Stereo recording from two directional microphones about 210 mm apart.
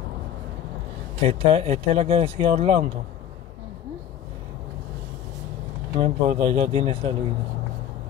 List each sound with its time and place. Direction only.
1.2 s speech: 30° right (ahead or behind)
5.9 s speech: 30° right (ahead or behind)